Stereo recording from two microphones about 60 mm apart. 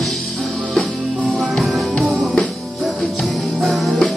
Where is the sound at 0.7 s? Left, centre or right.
Centre.